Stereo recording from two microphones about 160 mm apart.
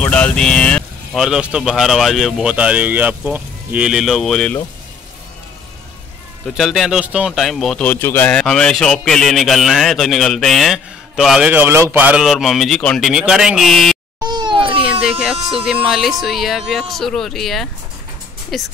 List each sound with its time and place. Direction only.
0.0 s a man's voice: 5° left (ahead or behind)
6.4 s a man's voice: centre (ahead or behind)
14.2 s a sound: 25° right (ahead or behind)
15.6 s a man's voice: centre (ahead or behind)